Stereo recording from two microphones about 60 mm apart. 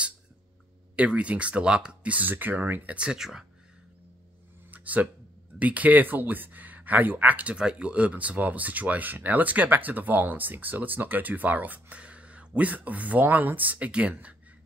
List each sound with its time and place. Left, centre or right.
0.9 s speech: right
3.0 s speech: centre
4.6 s a sound: right
5.6 s speech: right